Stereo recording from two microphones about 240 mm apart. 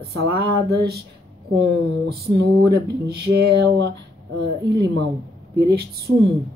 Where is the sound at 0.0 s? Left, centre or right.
Right.